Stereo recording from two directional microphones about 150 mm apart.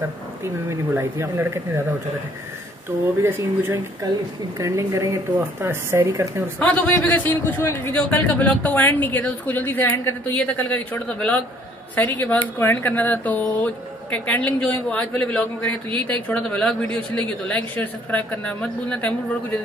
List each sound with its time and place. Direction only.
0.7 s speech: 20° right (ahead or behind)
3.2 s speech: 15° right (ahead or behind)
6.6 s speech: 10° left (ahead or behind)